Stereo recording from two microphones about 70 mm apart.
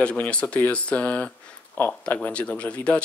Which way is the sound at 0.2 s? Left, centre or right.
Centre.